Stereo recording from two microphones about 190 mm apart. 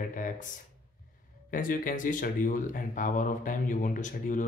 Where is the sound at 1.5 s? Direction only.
45° left (ahead or behind).